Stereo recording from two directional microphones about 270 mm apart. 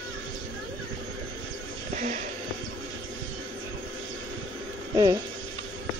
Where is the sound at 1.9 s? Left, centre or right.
Right.